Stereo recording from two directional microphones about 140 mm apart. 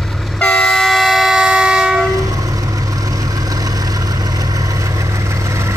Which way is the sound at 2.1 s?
25° right (ahead or behind).